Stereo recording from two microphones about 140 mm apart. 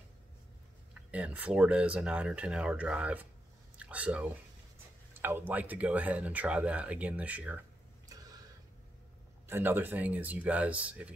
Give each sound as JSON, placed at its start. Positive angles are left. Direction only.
{"t": 1.1, "sound": "speech", "side_deg": -10}
{"t": 8.1, "sound": "a sound", "side_deg": -25}
{"t": 9.5, "sound": "speech", "side_deg": -15}